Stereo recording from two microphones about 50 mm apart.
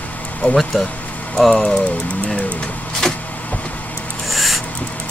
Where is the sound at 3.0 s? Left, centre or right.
Centre.